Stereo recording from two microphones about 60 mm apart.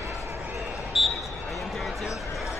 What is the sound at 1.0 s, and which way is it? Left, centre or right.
Basketball bounce, centre.